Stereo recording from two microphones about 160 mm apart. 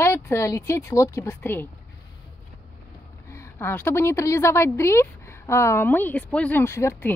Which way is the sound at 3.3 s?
15° left (ahead or behind).